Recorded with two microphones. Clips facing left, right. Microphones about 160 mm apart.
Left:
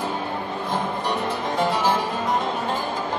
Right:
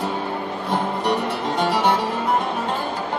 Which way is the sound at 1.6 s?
70° right (ahead or behind).